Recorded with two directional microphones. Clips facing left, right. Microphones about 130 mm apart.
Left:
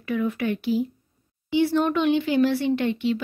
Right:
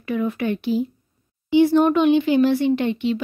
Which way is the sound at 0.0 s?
30° right (ahead or behind).